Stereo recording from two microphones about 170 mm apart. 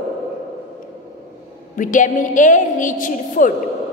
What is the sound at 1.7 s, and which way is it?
A woman's voice, 50° left (ahead or behind).